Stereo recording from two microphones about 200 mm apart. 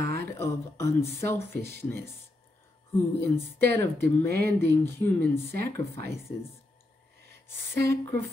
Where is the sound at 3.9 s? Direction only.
55° right (ahead or behind).